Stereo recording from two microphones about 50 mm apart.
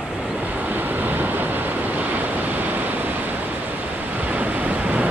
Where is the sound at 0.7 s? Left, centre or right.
Right.